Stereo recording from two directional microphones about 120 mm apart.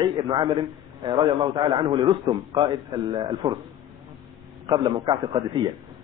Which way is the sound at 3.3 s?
50° right (ahead or behind).